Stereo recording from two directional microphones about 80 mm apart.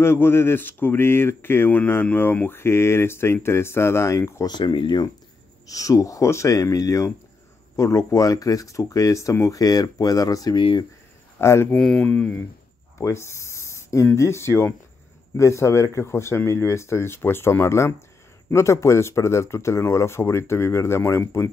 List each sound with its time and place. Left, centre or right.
0.0 s speech: left
4.5 s speech: left
5.7 s speech: left
10.5 s speech: left
11.3 s speech: left
11.7 s speech: centre
12.0 s speech: centre
13.0 s a sound: left
14.1 s speech: left